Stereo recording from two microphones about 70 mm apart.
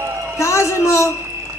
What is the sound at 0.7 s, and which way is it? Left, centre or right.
Speech, left.